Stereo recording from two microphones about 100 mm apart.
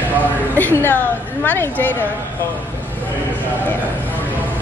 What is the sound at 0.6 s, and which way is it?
Music, 20° left (ahead or behind).